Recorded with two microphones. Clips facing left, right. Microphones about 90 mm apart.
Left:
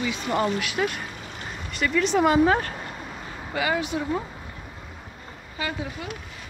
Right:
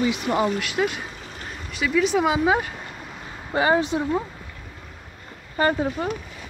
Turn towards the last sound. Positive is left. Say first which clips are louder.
# right 9 dB
turn(degrees=-40)  # may be behind; listen again after turning